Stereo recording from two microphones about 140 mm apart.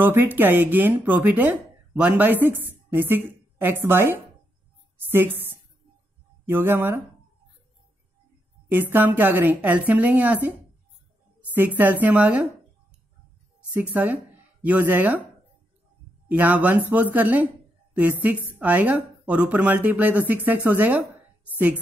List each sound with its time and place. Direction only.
0.0 s a woman's voice: 15° right (ahead or behind)
8.9 s speech: 15° right (ahead or behind)
11.5 s speech: 15° right (ahead or behind)
13.8 s speech: 10° right (ahead or behind)
16.3 s speech: 10° right (ahead or behind)